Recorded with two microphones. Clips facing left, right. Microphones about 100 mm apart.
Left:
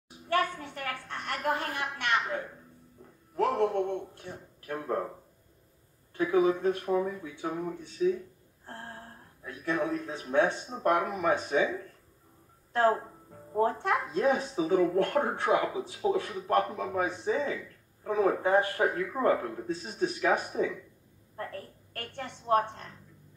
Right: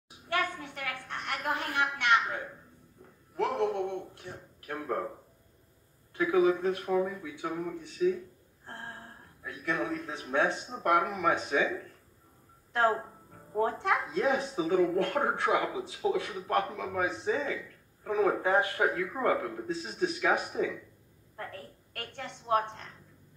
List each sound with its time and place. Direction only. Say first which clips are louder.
0.3 s a woman's voice: left 3 dB; 40° left (ahead or behind)
6.1 s speech: even; 35° left (ahead or behind)
8.6 s a sound: even; 35° left (ahead or behind)
9.4 s speech: left 2 dB; 35° left (ahead or behind)
13.6 s a woman's voice: left 1 dB; 35° left (ahead or behind)